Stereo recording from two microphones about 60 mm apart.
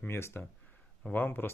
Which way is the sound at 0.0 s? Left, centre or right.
Left.